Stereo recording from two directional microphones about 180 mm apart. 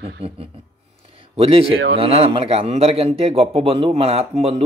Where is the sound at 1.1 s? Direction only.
30° right (ahead or behind).